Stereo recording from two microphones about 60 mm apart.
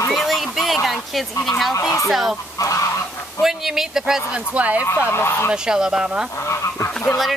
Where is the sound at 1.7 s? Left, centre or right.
Left.